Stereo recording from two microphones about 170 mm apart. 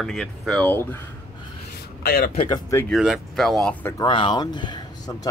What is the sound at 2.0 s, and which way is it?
Speech, 65° left (ahead or behind).